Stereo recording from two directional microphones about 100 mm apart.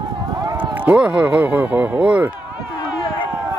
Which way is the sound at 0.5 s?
10° right (ahead or behind).